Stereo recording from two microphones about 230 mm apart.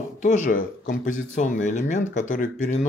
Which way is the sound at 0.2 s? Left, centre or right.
Left.